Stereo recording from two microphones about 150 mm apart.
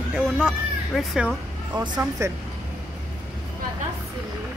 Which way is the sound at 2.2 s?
20° right (ahead or behind).